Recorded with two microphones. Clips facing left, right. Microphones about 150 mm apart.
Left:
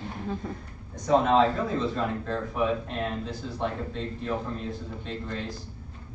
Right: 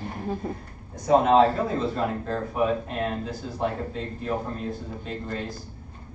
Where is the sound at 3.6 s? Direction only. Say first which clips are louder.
Right 3 dB; 50° right (ahead or behind).